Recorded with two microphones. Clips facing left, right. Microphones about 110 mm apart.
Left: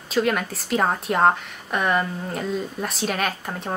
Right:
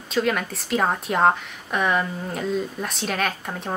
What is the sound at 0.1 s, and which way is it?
A woman's voice, centre (ahead or behind).